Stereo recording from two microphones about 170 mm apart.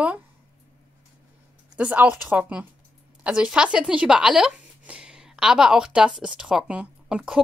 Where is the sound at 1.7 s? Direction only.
10° right (ahead or behind).